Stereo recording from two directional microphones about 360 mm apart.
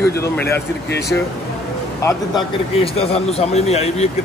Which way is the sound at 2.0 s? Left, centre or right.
Centre.